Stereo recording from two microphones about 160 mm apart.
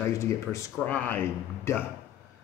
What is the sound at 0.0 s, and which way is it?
A man's voice, 20° left (ahead or behind).